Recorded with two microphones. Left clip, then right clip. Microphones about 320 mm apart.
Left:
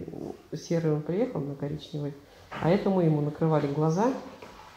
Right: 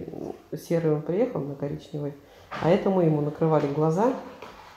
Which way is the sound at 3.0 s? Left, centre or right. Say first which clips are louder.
Right 3 dB; centre.